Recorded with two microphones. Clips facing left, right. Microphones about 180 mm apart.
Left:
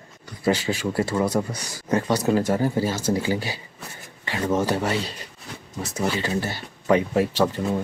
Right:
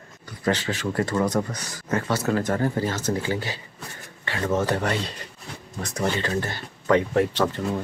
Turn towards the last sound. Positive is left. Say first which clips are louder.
# left 1 dB
turn(degrees=10)  # may be behind; listen again after turning